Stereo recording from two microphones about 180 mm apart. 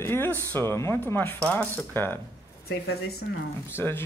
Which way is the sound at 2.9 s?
60° left (ahead or behind).